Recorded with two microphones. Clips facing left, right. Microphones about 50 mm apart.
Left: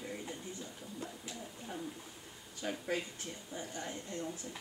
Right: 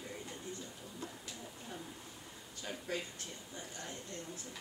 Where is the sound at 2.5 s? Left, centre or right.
Centre.